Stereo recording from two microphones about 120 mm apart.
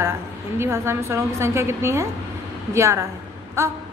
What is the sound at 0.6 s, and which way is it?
A woman's voice, 20° right (ahead or behind).